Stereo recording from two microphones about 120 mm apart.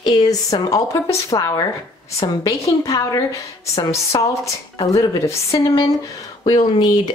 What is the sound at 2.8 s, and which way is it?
A woman's voice, 30° left (ahead or behind).